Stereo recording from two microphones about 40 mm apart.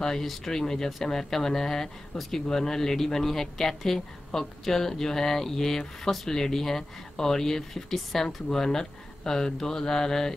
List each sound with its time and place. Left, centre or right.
0.0 s a woman's voice: centre
8.5 s a woman's voice: centre